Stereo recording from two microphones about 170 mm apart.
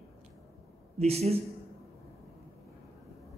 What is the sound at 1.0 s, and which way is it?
Speech, 40° right (ahead or behind).